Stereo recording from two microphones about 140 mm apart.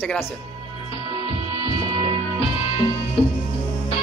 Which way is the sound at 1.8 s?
30° right (ahead or behind).